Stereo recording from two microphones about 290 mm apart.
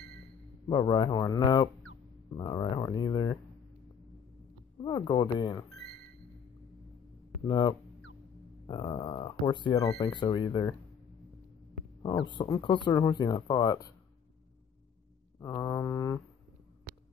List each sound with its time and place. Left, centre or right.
0.7 s speech: centre
4.8 s speech: centre
7.4 s speech: centre
12.0 s speech: centre
15.3 s speech: centre